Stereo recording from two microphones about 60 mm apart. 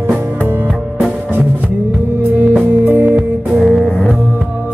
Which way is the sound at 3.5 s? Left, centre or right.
Centre.